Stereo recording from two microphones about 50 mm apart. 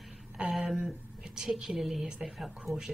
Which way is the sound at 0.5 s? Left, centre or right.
Centre.